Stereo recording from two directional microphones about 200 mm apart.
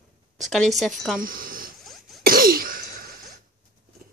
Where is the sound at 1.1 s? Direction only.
45° right (ahead or behind).